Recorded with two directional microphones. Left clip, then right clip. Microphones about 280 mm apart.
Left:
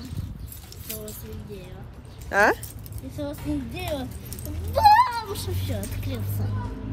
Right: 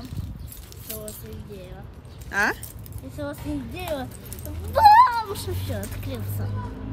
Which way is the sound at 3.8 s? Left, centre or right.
Centre.